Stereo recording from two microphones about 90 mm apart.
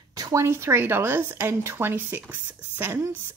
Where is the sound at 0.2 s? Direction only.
35° right (ahead or behind).